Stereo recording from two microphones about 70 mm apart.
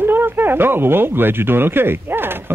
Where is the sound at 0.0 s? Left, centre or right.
Right.